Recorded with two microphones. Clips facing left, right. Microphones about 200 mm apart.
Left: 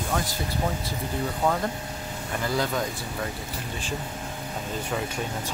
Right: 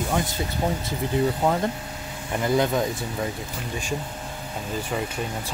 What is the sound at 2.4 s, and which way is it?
Speech, 20° right (ahead or behind).